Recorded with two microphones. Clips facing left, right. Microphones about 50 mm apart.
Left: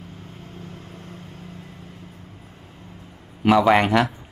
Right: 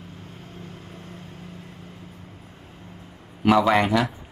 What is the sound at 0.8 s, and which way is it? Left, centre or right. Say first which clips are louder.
Vehicle: left 1 dB; centre.